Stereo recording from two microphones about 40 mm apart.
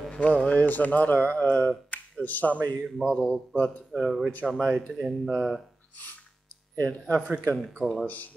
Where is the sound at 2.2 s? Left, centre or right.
Left.